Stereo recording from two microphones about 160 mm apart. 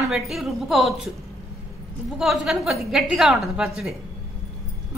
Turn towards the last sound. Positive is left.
turn(degrees=0)  # may be behind; listen again after turning